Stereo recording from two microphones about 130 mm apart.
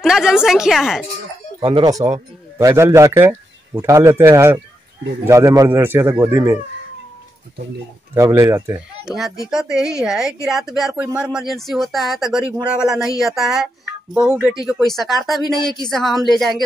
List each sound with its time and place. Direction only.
0.0 s speech: 5° right (ahead or behind)
1.6 s speech: 50° right (ahead or behind)
1.9 s a man's voice: 25° right (ahead or behind)
8.1 s speech: 20° right (ahead or behind)
9.0 s speech: centre (ahead or behind)
15.4 s speech: 35° left (ahead or behind)
15.9 s speech: centre (ahead or behind)